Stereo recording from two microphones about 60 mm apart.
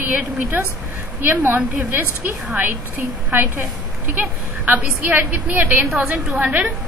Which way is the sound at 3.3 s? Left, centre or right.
Right.